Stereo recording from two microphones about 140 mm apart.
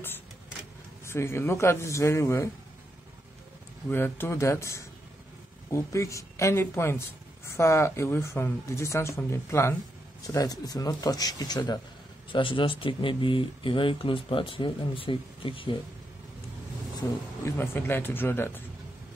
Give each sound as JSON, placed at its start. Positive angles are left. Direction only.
{"t": 1.0, "sound": "speech", "side_deg": 20}
{"t": 3.9, "sound": "speech", "side_deg": 15}
{"t": 17.5, "sound": "a man's voice", "side_deg": 15}